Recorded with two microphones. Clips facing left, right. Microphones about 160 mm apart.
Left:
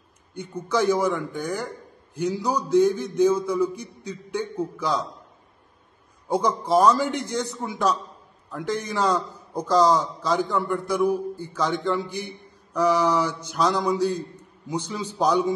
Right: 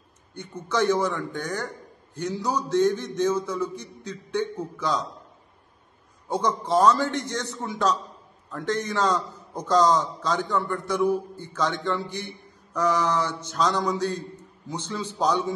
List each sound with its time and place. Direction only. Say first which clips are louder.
0.3 s a man's voice: left 3 dB; 10° left (ahead or behind)
6.2 s a man's voice: left 2 dB; 10° left (ahead or behind)